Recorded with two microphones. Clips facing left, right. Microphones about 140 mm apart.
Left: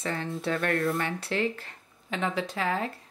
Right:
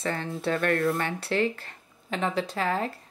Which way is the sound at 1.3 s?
40° right (ahead or behind).